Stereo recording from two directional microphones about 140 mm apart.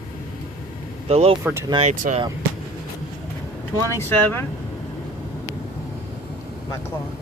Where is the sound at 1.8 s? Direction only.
60° right (ahead or behind).